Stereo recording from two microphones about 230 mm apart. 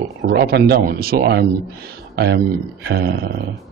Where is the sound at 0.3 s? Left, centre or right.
Right.